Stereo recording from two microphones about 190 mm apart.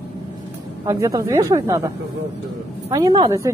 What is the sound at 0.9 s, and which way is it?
Speech, 20° right (ahead or behind).